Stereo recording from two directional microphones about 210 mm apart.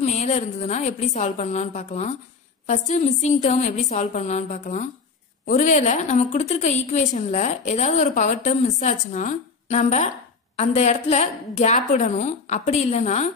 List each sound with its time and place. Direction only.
0.0 s a woman's voice: 30° left (ahead or behind)